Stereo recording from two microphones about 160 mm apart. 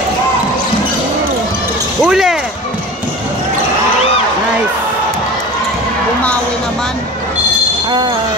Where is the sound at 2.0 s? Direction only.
5° right (ahead or behind).